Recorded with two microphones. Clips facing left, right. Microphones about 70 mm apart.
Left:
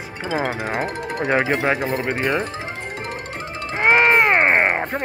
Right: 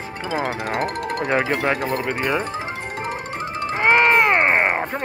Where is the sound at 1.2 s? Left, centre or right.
Centre.